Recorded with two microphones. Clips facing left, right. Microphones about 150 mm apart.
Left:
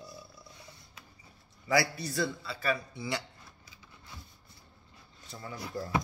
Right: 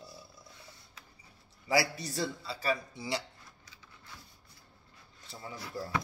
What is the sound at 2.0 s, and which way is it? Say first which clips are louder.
Speech: left 2 dB; 40° right (ahead or behind).